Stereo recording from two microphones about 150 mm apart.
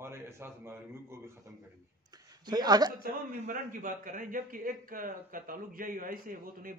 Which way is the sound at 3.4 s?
60° right (ahead or behind).